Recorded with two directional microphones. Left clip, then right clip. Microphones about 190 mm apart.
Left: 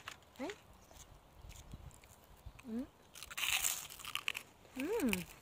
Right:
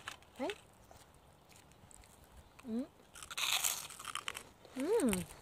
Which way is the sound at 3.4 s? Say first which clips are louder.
Right 1 dB; 20° right (ahead or behind).